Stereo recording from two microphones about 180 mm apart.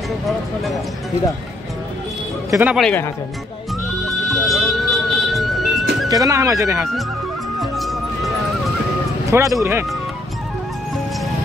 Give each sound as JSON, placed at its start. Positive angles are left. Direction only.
{"t": 2.5, "sound": "speech", "side_deg": -10}
{"t": 2.8, "sound": "speech", "side_deg": 5}
{"t": 4.0, "sound": "music", "side_deg": 0}
{"t": 6.0, "sound": "speech", "side_deg": -20}
{"t": 7.6, "sound": "music", "side_deg": 0}
{"t": 9.3, "sound": "speech", "side_deg": -15}